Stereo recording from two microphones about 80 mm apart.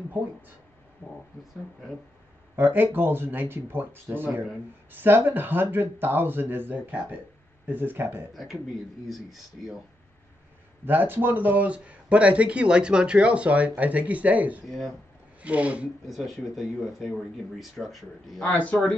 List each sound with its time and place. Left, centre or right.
1.0 s speech: right
2.5 s speech: right
8.3 s speech: centre
10.9 s speech: right
16.1 s speech: centre
18.7 s speech: centre